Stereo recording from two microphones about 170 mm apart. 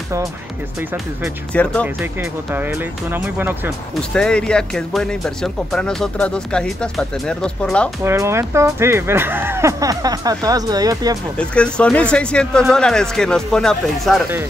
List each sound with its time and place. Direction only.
0.9 s speech: 5° left (ahead or behind)
2.0 s speech: 10° right (ahead or behind)
3.9 s speech: 5° left (ahead or behind)
8.0 s speech: 15° right (ahead or behind)
11.3 s speech: 5° left (ahead or behind)